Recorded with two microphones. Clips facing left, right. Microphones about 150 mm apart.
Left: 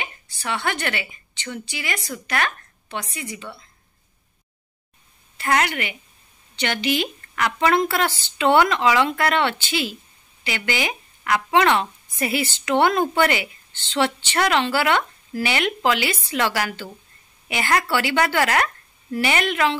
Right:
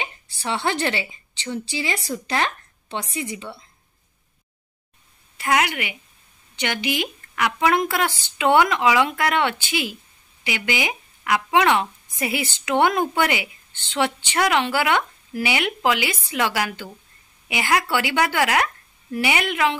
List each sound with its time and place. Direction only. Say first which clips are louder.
0.0 s a woman's voice: right 2 dB; 25° right (ahead or behind)
5.4 s speech: even; 10° right (ahead or behind)